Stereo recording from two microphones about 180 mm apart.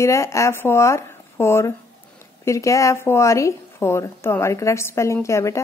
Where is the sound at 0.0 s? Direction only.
15° left (ahead or behind).